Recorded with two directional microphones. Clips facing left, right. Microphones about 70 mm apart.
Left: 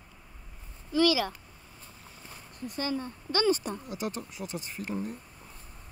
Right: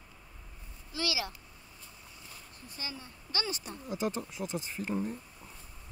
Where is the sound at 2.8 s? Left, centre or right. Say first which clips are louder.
Left 12 dB; left.